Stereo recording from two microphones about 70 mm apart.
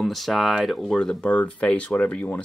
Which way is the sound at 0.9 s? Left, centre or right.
Centre.